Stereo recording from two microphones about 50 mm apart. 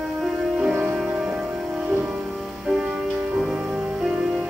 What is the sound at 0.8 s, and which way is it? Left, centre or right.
Music, centre.